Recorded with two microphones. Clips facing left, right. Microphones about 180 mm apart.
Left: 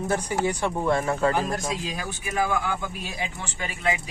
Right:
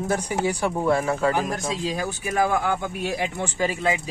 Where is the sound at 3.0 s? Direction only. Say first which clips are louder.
Right 7 dB; 65° right (ahead or behind).